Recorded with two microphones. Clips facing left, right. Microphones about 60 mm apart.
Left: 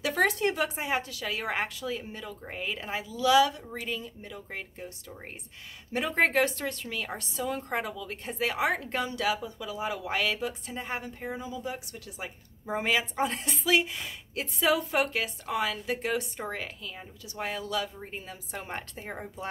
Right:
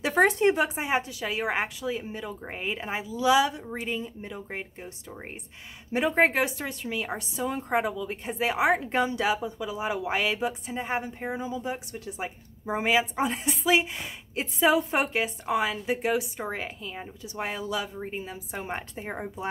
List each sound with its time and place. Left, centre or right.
0.0 s a woman's voice: right
5.9 s a woman's voice: centre
12.6 s a woman's voice: centre